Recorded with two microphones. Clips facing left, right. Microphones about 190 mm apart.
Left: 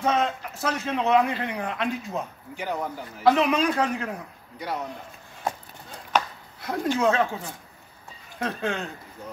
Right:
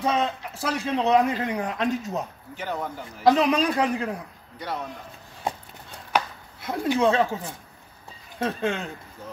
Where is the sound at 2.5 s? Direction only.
10° left (ahead or behind).